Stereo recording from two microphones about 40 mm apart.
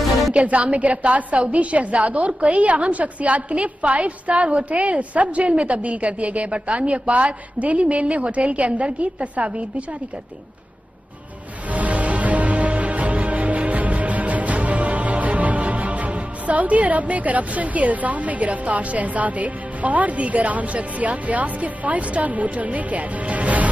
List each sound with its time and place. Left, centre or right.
0.3 s a woman's voice: right
11.6 s music: right